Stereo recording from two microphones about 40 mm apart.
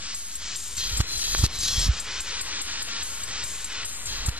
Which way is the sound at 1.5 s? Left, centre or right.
Centre.